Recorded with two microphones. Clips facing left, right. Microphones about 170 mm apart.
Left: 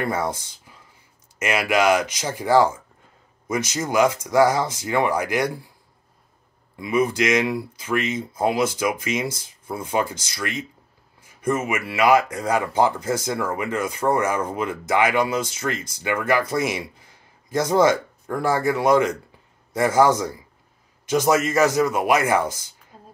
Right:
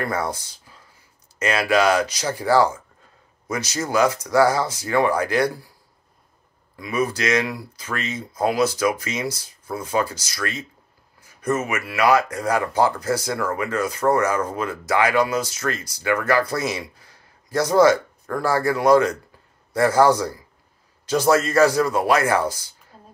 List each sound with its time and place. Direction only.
0.0 s speech: 20° left (ahead or behind)
6.8 s a man's voice: 20° left (ahead or behind)